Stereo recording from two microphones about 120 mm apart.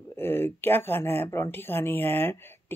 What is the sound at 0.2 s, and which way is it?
Speech, 20° left (ahead or behind).